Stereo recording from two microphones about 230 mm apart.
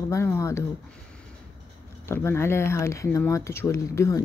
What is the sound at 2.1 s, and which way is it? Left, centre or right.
Speech, centre.